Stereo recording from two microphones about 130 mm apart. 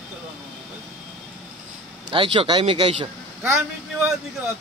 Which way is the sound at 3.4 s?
20° right (ahead or behind).